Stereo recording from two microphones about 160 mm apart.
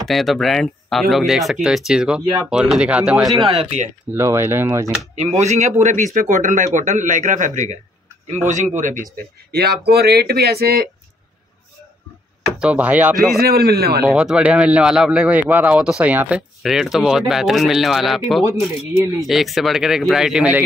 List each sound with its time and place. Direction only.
0.1 s speech: centre (ahead or behind)
3.5 s a man's voice: 45° right (ahead or behind)
4.1 s speech: 15° right (ahead or behind)
5.4 s a man's voice: 45° right (ahead or behind); by 10.9 s 75° right (ahead or behind)
12.4 s speech: 5° right (ahead or behind)
13.4 s speech: 75° right (ahead or behind)
14.0 s speech: 5° right (ahead or behind)